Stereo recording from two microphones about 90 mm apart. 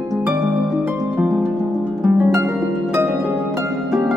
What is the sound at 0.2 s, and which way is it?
Music, 5° right (ahead or behind).